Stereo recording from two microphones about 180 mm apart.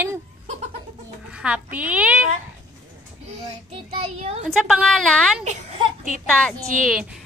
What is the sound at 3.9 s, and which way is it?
Speech, 35° right (ahead or behind).